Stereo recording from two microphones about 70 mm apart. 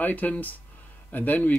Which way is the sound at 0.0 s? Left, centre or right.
Left.